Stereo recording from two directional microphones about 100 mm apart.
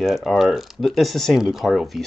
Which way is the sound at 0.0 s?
Centre (ahead or behind).